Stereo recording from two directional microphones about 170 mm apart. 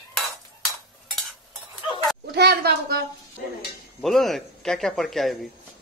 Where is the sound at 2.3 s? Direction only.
75° right (ahead or behind).